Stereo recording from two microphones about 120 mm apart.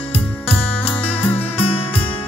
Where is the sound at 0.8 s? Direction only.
10° left (ahead or behind).